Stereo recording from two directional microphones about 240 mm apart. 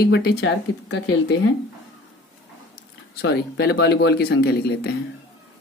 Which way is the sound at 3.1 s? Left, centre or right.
Left.